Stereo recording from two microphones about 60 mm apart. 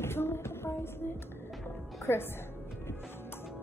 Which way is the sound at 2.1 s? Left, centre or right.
Left.